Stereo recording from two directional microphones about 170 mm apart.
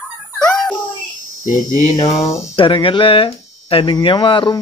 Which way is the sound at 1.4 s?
50° left (ahead or behind).